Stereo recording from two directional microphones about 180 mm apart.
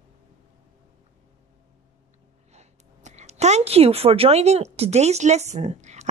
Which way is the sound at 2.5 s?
40° right (ahead or behind).